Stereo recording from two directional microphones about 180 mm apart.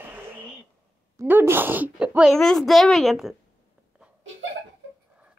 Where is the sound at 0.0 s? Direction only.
10° right (ahead or behind).